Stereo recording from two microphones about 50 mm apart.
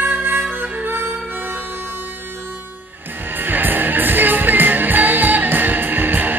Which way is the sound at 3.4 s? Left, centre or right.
Right.